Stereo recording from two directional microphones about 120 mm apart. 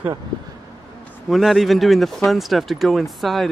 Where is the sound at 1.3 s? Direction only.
Centre (ahead or behind).